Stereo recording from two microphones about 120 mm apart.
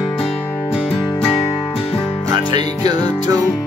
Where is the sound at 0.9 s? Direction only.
30° left (ahead or behind).